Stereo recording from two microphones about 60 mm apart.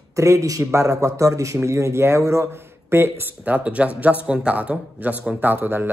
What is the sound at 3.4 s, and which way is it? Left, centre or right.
Speech, right.